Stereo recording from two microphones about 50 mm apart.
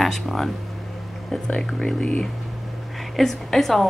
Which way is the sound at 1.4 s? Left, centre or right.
Centre.